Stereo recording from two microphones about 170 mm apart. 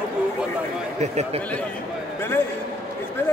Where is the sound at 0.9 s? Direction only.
40° right (ahead or behind).